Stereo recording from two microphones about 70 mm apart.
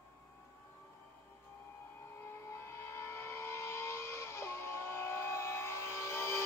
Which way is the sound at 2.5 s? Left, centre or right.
Left.